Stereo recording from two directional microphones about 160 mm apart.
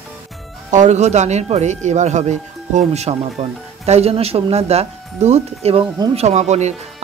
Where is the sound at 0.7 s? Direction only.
50° right (ahead or behind).